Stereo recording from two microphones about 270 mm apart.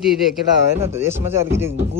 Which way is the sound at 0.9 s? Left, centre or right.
Centre.